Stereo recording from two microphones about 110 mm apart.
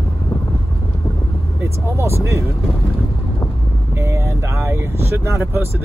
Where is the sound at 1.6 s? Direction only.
25° right (ahead or behind).